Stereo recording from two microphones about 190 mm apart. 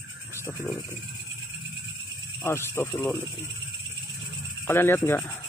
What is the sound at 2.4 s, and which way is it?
Speech, 15° left (ahead or behind).